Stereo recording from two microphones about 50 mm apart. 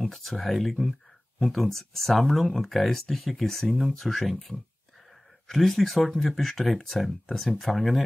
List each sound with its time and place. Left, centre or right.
0.0 s speech: centre